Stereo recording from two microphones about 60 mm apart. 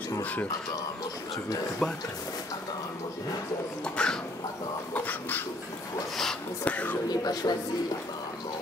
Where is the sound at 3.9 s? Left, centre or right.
Centre.